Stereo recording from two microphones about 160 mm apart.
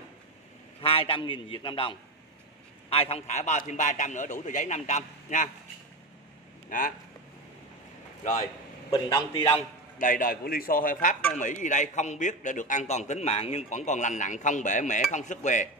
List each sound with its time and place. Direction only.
0.7 s a man's voice: 35° left (ahead or behind)
6.7 s a man's voice: 60° left (ahead or behind)
8.2 s speech: 50° left (ahead or behind)
8.9 s a man's voice: 25° left (ahead or behind)
9.6 s a man's voice: 55° left (ahead or behind)